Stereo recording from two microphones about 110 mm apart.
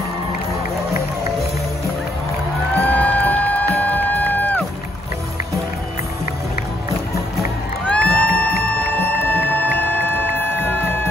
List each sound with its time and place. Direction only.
2.8 s music: 15° left (ahead or behind)
7.8 s music: 10° left (ahead or behind)